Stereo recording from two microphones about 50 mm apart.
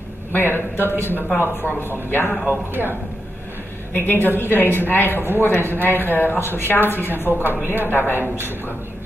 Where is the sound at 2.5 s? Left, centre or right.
Right.